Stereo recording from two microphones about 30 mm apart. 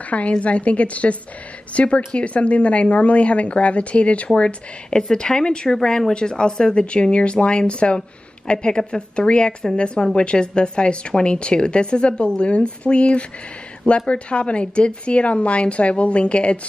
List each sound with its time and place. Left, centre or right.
0.4 s speech: left
4.9 s speech: left
5.8 s a woman's voice: centre; by 8.0 s left
8.5 s a woman's voice: left